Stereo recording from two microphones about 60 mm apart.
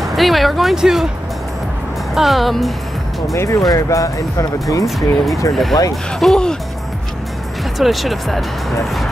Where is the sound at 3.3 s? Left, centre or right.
Left.